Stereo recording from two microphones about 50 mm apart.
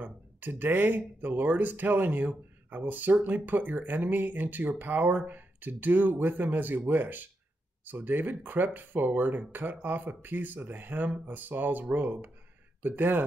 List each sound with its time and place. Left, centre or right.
0.0 s speech: right